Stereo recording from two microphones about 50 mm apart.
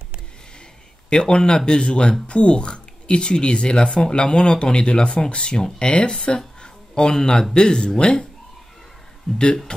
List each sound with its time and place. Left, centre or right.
1.1 s speech: centre